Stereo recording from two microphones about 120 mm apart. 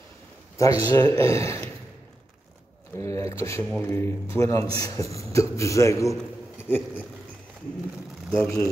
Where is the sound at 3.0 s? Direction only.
25° left (ahead or behind).